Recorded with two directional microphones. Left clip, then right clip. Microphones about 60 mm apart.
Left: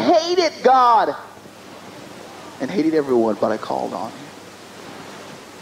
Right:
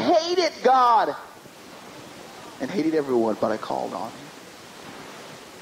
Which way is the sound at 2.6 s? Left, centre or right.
Left.